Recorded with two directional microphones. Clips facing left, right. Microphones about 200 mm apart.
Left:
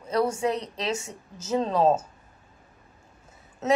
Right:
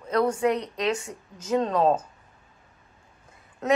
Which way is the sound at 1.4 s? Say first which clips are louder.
Even; 5° left (ahead or behind).